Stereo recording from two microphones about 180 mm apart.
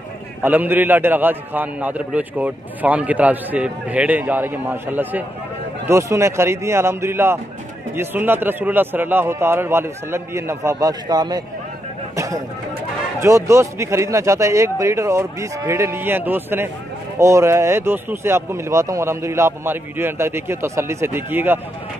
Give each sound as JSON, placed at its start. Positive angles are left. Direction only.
{"t": 0.4, "sound": "a man's voice", "side_deg": -10}
{"t": 13.2, "sound": "a man's voice", "side_deg": -15}